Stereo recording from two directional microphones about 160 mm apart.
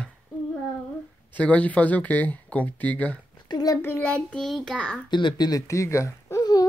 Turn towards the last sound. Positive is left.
turn(degrees=25)  # may be behind; listen again after turning